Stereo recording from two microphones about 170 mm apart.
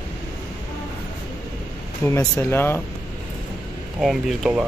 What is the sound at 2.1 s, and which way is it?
Speech, 15° left (ahead or behind).